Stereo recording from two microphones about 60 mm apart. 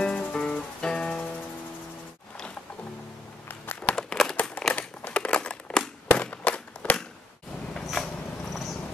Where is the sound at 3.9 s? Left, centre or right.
Centre; by 7.0 s left.